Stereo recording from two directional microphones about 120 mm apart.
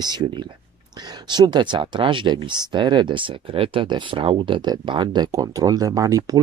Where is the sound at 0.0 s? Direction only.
35° right (ahead or behind).